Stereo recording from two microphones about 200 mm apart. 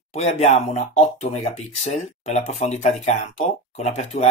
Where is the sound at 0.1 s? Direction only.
30° left (ahead or behind).